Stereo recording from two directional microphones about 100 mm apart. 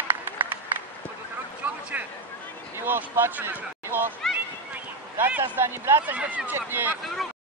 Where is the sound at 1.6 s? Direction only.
15° right (ahead or behind).